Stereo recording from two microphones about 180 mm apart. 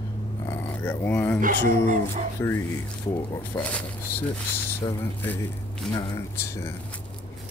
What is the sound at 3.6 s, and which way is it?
Speech, 10° left (ahead or behind).